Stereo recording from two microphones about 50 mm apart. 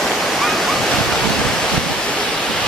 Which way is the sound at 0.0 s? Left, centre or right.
Centre.